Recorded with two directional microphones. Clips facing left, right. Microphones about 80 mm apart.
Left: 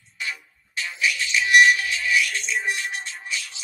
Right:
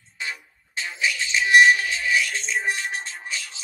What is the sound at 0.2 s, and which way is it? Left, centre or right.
Music, right.